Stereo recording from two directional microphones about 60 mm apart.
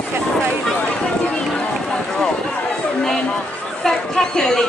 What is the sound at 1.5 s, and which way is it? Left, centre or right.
Run, centre.